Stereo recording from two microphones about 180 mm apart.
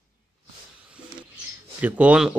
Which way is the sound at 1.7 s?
10° right (ahead or behind).